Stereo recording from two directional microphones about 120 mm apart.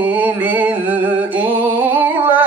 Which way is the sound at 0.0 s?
15° right (ahead or behind).